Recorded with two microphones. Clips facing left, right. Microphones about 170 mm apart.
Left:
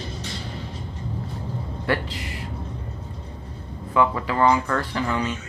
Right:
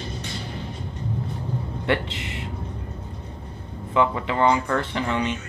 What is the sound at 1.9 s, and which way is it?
Speech, 25° right (ahead or behind).